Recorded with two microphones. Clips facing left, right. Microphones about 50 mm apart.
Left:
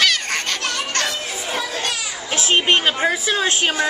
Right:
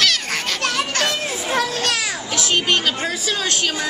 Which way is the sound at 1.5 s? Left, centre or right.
Right.